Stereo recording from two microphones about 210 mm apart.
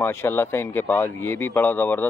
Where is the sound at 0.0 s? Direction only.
10° left (ahead or behind).